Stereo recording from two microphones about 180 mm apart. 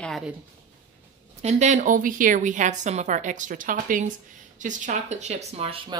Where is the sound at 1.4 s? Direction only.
40° right (ahead or behind).